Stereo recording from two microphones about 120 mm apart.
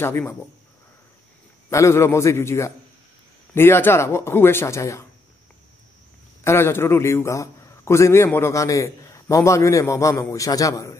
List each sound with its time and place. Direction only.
0.0 s a man's voice: 20° left (ahead or behind)
1.7 s a man's voice: 25° left (ahead or behind)
6.4 s a man's voice: 20° left (ahead or behind)